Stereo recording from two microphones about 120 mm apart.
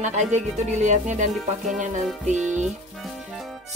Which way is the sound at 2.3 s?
85° right.